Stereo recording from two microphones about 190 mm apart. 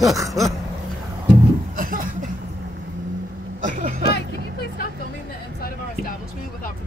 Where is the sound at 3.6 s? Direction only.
35° right (ahead or behind).